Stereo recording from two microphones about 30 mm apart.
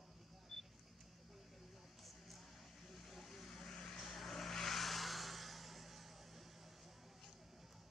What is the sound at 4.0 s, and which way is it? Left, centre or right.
Vehicle, centre.